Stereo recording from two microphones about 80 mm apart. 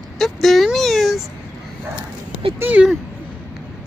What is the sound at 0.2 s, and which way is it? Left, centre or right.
Vehicle, centre.